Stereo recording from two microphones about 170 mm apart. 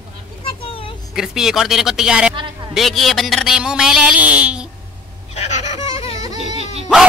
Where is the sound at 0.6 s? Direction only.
35° left (ahead or behind).